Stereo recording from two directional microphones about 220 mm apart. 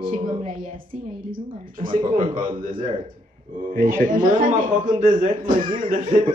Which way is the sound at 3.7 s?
40° right (ahead or behind).